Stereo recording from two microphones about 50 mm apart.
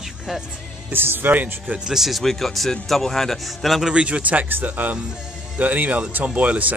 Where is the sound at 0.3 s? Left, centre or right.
Centre.